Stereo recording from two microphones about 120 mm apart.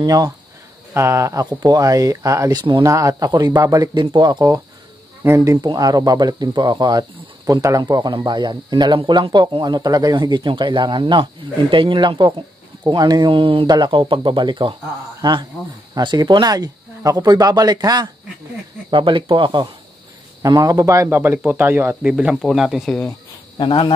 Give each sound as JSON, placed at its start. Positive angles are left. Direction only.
{"t": 0.0, "sound": "speech", "side_deg": -30}
{"t": 2.6, "sound": "speech", "side_deg": -40}
{"t": 2.9, "sound": "speech", "side_deg": -25}
{"t": 5.2, "sound": "speech", "side_deg": -25}
{"t": 20.4, "sound": "a man's voice", "side_deg": -30}
{"t": 23.6, "sound": "speech", "side_deg": 45}